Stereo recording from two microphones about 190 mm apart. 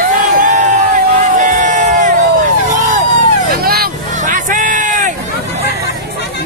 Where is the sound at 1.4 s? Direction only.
40° right (ahead or behind).